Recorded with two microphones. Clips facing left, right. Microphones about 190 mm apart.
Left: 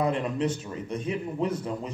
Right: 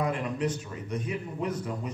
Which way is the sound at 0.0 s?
25° left (ahead or behind).